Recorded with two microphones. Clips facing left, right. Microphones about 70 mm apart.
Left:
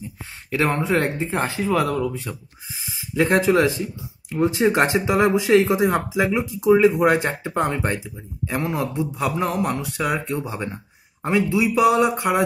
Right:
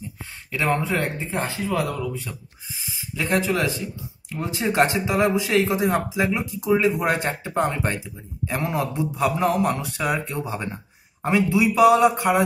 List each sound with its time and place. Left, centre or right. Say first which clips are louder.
0.6 s speech: left 2 dB; left
3.5 s speech: left 6 dB; left; by 12.4 s centre